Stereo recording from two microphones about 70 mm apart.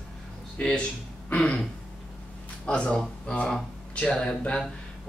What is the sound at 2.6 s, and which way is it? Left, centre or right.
Speech, centre.